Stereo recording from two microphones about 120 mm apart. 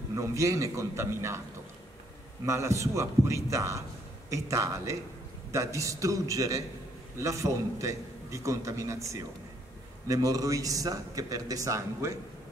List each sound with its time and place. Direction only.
0.1 s a man's voice: 25° right (ahead or behind)
2.4 s a man's voice: 25° right (ahead or behind)